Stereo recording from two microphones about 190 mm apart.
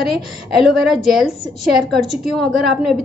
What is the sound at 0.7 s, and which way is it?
A woman's voice, centre (ahead or behind).